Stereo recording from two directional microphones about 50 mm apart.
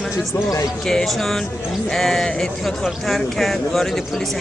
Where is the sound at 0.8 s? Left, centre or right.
Centre.